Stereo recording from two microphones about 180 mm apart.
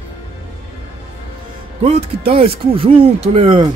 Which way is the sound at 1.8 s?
35° right (ahead or behind).